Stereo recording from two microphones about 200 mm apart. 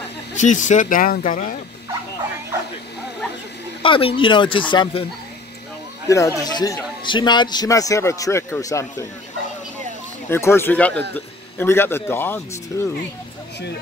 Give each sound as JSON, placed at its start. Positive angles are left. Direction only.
{"t": 0.4, "sound": "speech", "side_deg": 40}
{"t": 3.8, "sound": "speech", "side_deg": 25}
{"t": 6.0, "sound": "a man's voice", "side_deg": 15}
{"t": 10.3, "sound": "a man's voice", "side_deg": 10}